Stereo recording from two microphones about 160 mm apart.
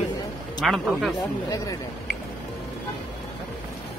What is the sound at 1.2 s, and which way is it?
Speech, 20° left (ahead or behind).